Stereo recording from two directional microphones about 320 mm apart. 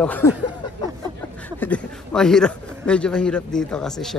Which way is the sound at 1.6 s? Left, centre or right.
Centre.